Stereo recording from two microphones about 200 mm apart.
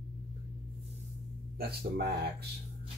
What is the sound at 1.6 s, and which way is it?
Speech, 50° right (ahead or behind).